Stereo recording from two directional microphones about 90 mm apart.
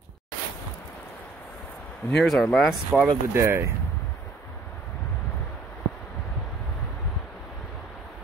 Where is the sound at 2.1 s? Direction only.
5° left (ahead or behind).